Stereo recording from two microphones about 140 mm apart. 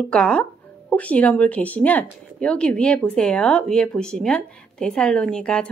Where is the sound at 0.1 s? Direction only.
5° left (ahead or behind).